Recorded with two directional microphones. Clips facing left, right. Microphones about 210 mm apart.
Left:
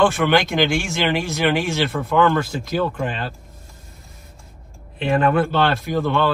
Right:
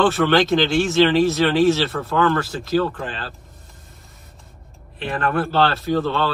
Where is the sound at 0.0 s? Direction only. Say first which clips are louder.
Even; 10° left (ahead or behind).